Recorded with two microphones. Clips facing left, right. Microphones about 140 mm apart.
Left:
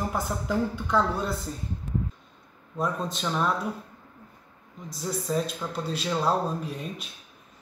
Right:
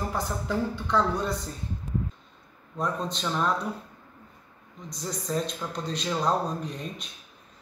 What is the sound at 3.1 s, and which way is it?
Speech, 5° left (ahead or behind).